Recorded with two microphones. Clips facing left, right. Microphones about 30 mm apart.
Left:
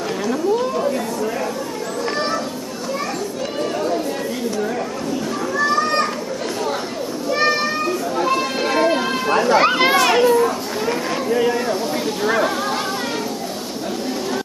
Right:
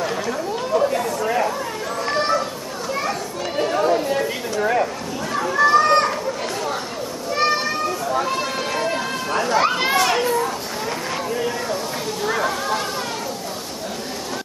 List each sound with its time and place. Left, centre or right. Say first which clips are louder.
0.3 s chatter: left 6 dB; centre
1.2 s chatter: right 2 dB; right
3.8 s chatter: right 2 dB; centre
5.3 s children playing: right 4 dB; centre
7.4 s children playing: left 1 dB; centre
8.2 s a sound: left 4 dB; centre
9.9 s children playing: left 4 dB; centre
12.3 s a sound: left 2 dB; centre